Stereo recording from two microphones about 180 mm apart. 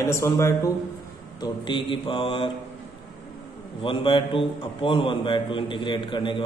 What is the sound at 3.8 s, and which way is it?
A man's voice, 30° left (ahead or behind).